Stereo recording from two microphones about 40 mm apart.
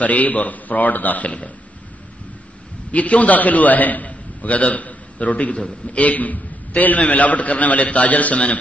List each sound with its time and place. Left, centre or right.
0.0 s a man's voice: left
2.9 s a man's voice: left